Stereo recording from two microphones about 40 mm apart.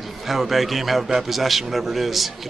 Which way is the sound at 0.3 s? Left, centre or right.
Centre.